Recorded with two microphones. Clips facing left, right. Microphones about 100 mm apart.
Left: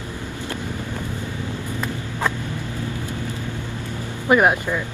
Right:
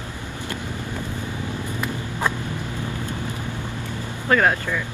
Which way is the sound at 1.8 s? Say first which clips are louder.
Even; 15° right (ahead or behind).